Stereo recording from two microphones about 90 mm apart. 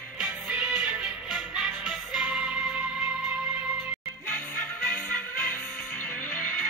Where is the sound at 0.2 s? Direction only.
10° right (ahead or behind).